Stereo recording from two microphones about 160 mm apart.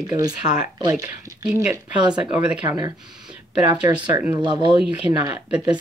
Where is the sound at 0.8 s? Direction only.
20° right (ahead or behind).